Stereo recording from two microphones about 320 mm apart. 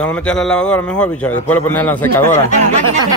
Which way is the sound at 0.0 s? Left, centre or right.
Centre.